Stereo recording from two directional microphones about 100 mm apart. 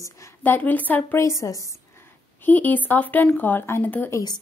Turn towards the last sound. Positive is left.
turn(degrees=40)  # may be behind; listen again after turning